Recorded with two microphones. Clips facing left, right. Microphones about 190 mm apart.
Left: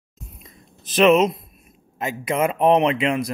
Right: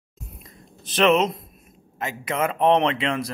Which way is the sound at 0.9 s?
10° left (ahead or behind).